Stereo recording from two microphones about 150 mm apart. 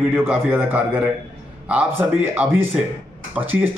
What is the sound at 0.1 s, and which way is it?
Speech, 15° right (ahead or behind).